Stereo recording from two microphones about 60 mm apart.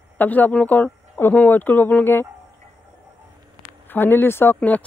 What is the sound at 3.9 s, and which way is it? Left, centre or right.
Speech, left.